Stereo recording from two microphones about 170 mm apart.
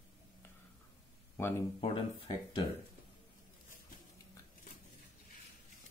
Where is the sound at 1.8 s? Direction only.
30° left (ahead or behind).